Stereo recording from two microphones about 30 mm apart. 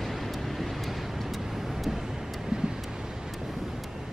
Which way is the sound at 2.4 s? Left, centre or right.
Right.